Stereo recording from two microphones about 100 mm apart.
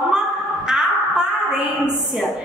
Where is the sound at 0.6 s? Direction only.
5° right (ahead or behind).